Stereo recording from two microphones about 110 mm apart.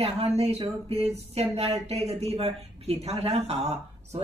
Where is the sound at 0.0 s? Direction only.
65° right (ahead or behind).